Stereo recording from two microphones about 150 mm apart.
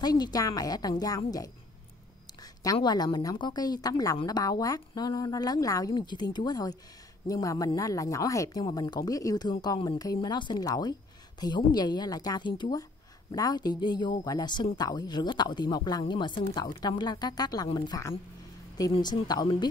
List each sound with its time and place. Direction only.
0.0 s a woman's voice: 25° left (ahead or behind)